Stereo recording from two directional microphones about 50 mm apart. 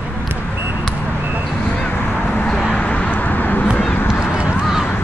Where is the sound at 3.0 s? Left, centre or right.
Left.